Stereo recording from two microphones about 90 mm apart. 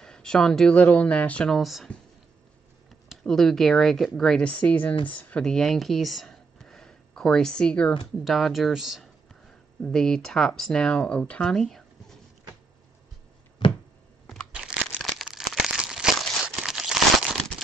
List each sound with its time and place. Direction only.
0.0 s speech: 10° left (ahead or behind)
1.5 s a woman's voice: centre (ahead or behind)
3.1 s a woman's voice: 5° left (ahead or behind)
8.2 s speech: centre (ahead or behind)
13.6 s a sound: 65° left (ahead or behind)
14.5 s crumpling: 10° right (ahead or behind)